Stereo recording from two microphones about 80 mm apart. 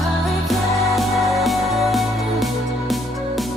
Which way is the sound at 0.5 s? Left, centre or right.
Centre.